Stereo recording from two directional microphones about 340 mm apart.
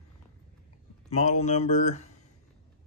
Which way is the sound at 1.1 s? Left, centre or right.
Centre.